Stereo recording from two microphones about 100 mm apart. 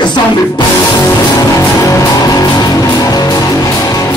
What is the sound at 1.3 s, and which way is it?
Music, 30° left (ahead or behind).